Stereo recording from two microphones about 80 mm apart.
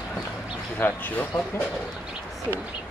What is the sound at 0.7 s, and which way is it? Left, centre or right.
Speech, left.